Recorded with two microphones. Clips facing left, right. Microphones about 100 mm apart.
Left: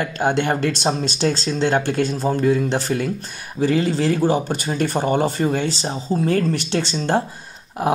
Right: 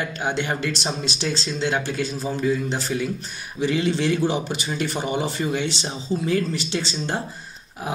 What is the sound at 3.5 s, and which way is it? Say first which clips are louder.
Speech: left 3 dB; 40° left (ahead or behind).